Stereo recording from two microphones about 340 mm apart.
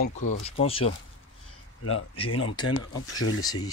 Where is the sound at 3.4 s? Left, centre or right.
Centre.